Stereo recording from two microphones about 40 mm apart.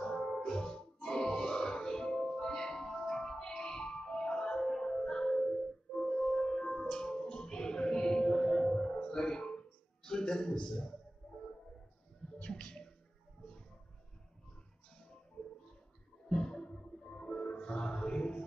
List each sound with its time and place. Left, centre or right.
0.0 s music: centre
12.4 s a sound: left
16.3 s music: centre